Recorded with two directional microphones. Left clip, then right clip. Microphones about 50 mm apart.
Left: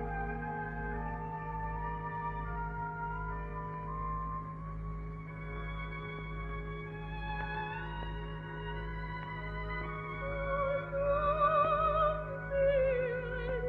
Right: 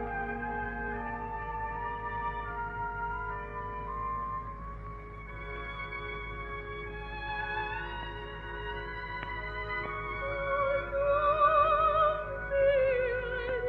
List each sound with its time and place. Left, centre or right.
0.0 s music: left
7.2 s music: left
9.7 s music: left